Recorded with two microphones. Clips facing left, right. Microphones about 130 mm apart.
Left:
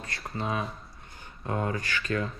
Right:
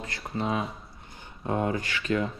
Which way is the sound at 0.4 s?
25° right (ahead or behind).